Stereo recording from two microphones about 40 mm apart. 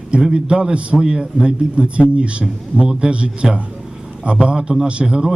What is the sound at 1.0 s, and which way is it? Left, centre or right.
Speech, centre.